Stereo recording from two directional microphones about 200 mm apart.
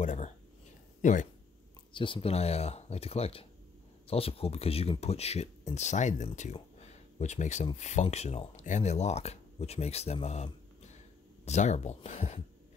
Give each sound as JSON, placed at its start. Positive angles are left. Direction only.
{"t": 0.0, "sound": "a sound", "side_deg": 35}
{"t": 1.0, "sound": "speech", "side_deg": 40}
{"t": 2.0, "sound": "speech", "side_deg": 25}